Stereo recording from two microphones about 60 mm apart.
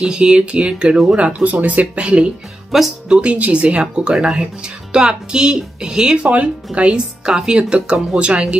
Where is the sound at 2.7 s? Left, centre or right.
Centre.